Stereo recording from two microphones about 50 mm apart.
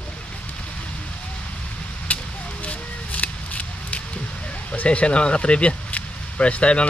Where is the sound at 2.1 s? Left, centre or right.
Left.